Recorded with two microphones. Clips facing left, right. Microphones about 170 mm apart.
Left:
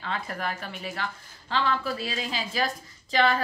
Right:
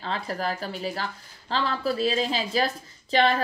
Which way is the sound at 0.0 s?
35° right (ahead or behind).